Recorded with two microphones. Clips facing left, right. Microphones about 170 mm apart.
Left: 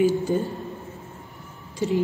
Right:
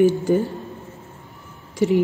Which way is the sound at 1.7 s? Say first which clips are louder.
Right 5 dB; 80° right.